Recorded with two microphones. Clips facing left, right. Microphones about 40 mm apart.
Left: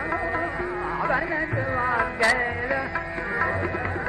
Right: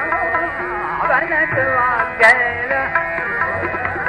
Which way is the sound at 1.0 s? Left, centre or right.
Right.